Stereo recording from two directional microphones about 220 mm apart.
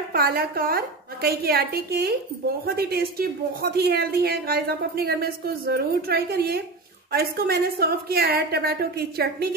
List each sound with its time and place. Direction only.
0.1 s speech: 45° right (ahead or behind)